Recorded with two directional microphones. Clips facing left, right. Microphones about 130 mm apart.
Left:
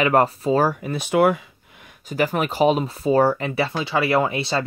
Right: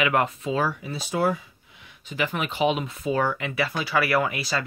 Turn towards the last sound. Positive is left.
turn(degrees=30)  # may be behind; listen again after turning